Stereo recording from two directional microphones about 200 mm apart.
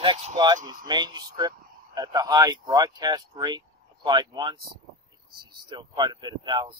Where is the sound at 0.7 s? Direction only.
20° right (ahead or behind).